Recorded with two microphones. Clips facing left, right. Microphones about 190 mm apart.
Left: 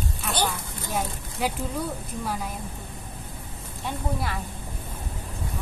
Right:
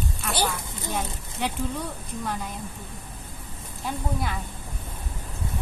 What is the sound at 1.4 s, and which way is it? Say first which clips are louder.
Speech: left 2 dB; 5° left (ahead or behind).